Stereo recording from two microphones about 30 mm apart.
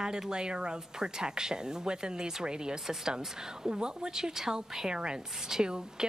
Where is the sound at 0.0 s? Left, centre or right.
Right.